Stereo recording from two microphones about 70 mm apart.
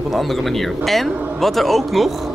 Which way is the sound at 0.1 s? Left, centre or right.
Centre.